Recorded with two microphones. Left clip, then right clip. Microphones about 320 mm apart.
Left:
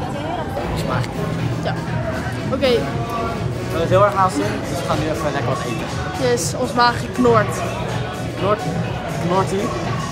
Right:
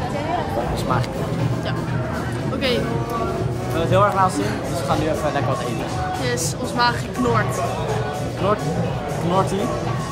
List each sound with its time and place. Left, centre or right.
3.9 s speech: centre
6.2 s a woman's voice: centre